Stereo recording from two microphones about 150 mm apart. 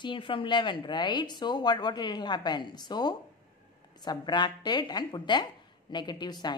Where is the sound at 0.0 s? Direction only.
35° left (ahead or behind).